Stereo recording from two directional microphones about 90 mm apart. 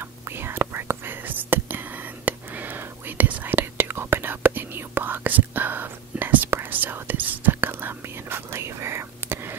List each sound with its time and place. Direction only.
0.4 s whispering: 25° right (ahead or behind)